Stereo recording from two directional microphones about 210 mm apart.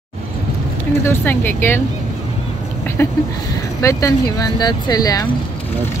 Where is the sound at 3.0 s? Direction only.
10° left (ahead or behind).